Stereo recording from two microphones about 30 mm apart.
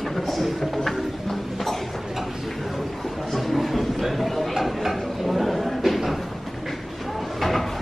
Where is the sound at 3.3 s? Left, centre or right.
Centre.